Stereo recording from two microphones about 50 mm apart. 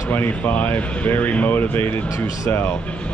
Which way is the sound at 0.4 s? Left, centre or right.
Left.